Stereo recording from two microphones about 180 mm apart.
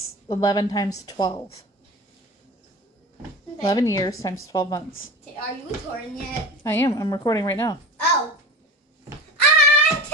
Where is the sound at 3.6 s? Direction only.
20° left (ahead or behind).